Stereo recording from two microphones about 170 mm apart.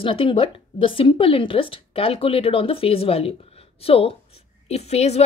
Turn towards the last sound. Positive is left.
turn(degrees=40)  # may be behind; listen again after turning